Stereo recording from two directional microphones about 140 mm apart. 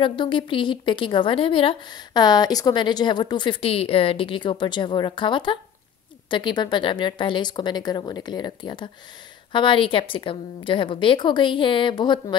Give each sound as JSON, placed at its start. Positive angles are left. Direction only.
{"t": 0.0, "sound": "a woman's voice", "side_deg": 35}